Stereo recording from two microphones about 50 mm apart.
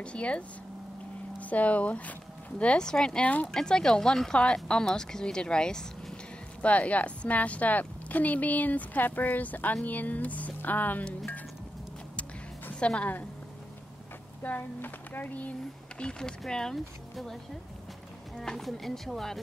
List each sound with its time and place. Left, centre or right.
0.0 s speech: left
2.6 s speech: centre
6.6 s speech: left
12.7 s a woman's voice: left
14.4 s speech: left
16.0 s speech: centre